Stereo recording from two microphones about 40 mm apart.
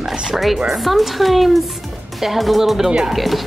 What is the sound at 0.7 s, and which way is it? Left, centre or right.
A woman's voice, centre.